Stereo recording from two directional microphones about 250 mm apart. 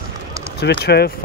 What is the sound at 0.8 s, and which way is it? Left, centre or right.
Speech, left.